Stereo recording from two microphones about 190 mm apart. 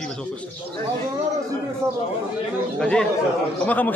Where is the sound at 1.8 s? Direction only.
15° right (ahead or behind).